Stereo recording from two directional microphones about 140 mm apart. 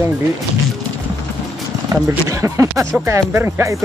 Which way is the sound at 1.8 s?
20° right (ahead or behind).